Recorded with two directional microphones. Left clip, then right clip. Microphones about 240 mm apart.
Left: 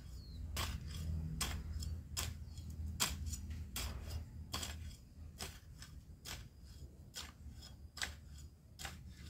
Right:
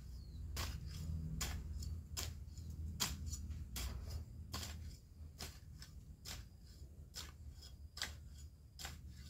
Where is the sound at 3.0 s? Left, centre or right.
Centre.